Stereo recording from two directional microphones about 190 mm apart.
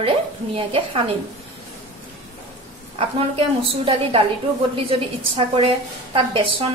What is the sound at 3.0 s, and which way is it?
A woman's voice, 30° right (ahead or behind).